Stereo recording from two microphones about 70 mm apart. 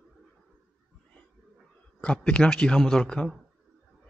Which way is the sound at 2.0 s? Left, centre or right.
Centre.